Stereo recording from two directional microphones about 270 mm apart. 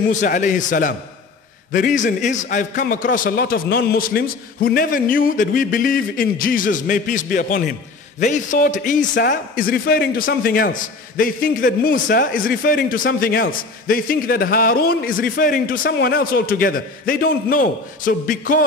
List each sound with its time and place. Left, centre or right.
0.0 s a man's voice: left